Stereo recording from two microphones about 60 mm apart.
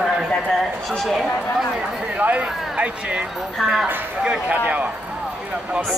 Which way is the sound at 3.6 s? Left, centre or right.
Centre.